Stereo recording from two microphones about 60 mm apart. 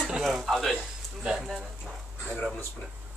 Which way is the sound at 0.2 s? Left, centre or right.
Centre.